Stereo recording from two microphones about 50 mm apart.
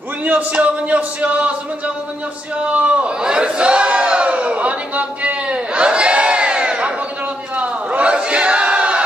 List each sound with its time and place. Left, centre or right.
0.2 s a man's voice: right
2.7 s crowd: right
7.5 s a sound: right